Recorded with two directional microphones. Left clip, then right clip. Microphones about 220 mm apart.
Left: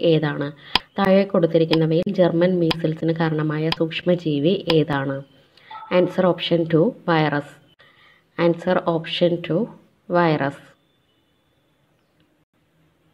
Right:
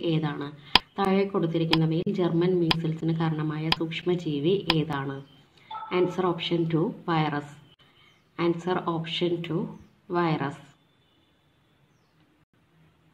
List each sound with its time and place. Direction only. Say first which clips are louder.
0.0 s speech: left 10 dB; 25° left (ahead or behind)